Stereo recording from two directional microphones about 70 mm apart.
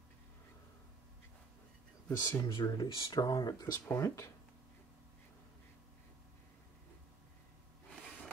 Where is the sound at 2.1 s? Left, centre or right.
Left.